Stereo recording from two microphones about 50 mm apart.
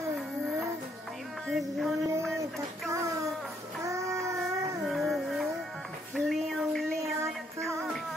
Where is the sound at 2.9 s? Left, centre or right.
Right.